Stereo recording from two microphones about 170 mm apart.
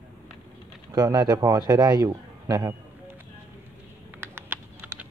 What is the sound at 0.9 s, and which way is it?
A man's voice, 25° right (ahead or behind).